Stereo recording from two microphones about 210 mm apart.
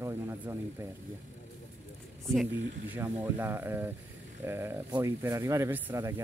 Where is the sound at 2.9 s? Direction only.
10° right (ahead or behind).